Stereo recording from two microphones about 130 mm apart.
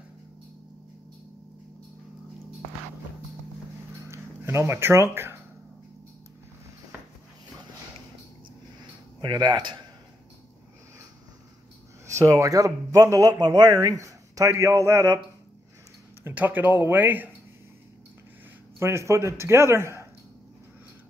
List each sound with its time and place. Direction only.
4.1 s a sound: 20° right (ahead or behind)
9.2 s speech: 35° right (ahead or behind)
12.1 s a man's voice: 25° right (ahead or behind)
16.3 s speech: 15° right (ahead or behind)
18.8 s a man's voice: 20° right (ahead or behind)